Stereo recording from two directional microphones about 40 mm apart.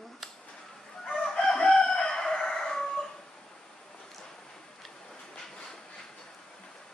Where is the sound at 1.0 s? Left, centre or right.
Centre.